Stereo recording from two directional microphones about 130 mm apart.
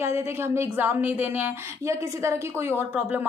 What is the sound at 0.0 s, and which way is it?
A woman's voice, 20° right (ahead or behind).